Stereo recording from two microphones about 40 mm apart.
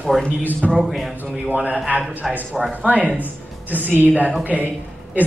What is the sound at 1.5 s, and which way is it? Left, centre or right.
A man's voice, right.